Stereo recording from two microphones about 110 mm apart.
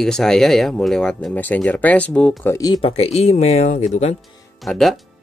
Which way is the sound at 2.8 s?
60° left (ahead or behind).